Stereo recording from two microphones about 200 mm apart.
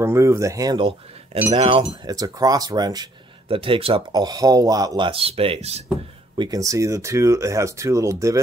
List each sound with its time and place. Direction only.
0.0 s speech: 15° right (ahead or behind); by 5.9 s 30° right (ahead or behind)
6.3 s speech: 20° right (ahead or behind)